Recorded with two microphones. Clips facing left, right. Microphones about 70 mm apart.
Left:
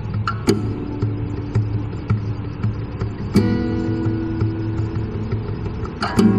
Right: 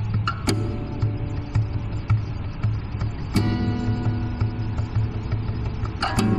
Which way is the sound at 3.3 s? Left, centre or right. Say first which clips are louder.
Left 6 dB; left.